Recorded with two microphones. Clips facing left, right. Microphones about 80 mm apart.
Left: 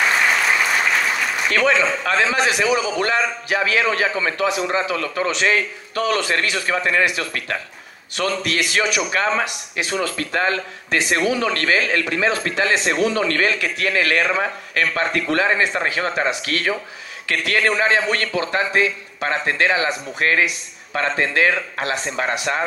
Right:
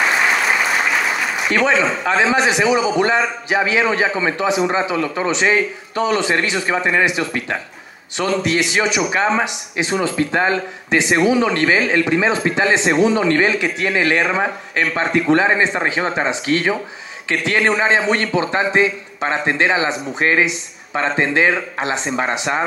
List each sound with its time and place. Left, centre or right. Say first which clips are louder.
1.5 s a man's voice: right 2 dB; centre